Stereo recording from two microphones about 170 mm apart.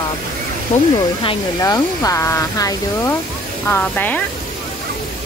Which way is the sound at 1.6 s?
20° left (ahead or behind).